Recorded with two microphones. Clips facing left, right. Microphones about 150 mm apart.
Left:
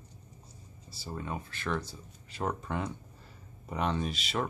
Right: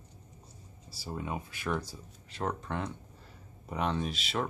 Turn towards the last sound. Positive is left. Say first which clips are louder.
# even
turn(degrees=0)  # may be behind; listen again after turning